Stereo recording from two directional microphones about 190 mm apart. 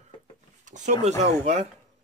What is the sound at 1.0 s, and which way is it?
Speech, 35° right (ahead or behind).